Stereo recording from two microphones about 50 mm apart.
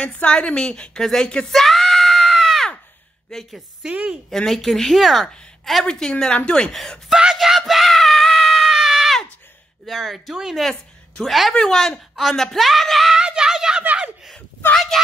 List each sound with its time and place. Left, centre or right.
0.0 s a woman's voice: left
1.0 s speech: centre
1.5 s a sound: centre
3.3 s speech: centre
3.8 s a woman's voice: right
4.3 s speech: centre
5.9 s a woman's voice: centre
7.1 s speech: centre
7.3 s screaming: centre
9.8 s speech: centre
11.5 s speech: centre
13.1 s a sound: centre